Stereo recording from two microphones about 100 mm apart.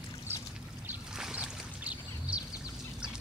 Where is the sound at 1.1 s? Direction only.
10° right (ahead or behind).